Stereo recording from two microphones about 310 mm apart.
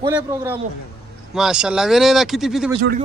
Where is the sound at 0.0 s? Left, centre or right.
Centre.